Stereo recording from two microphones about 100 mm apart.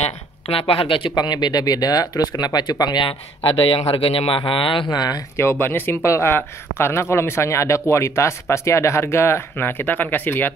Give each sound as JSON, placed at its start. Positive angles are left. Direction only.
{"t": 0.5, "sound": "speech", "side_deg": 70}
{"t": 1.1, "sound": "speech", "side_deg": 45}
{"t": 4.4, "sound": "speech", "side_deg": 60}
{"t": 4.9, "sound": "speech", "side_deg": 40}
{"t": 5.4, "sound": "speech", "side_deg": 25}